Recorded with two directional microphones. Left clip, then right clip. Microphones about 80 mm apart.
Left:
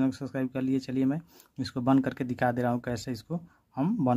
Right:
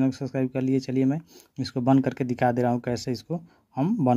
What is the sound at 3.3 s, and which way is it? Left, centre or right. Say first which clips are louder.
Speech: right 5 dB; centre.